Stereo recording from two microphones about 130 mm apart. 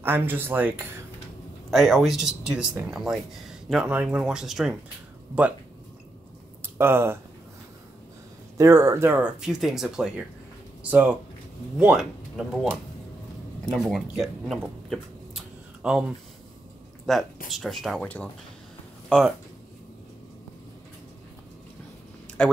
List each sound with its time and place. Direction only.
0.0 s speech: 15° right (ahead or behind)
1.7 s speech: centre (ahead or behind)
6.6 s speech: 20° right (ahead or behind)
8.5 s speech: 25° right (ahead or behind)
9.2 s speech: 5° right (ahead or behind)
13.7 s speech: centre (ahead or behind)
14.9 s a sound: 5° right (ahead or behind)
17.0 s speech: centre (ahead or behind)
22.4 s speech: 10° left (ahead or behind)